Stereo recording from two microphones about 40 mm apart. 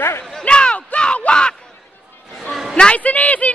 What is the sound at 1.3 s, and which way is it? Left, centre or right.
Crowd, left.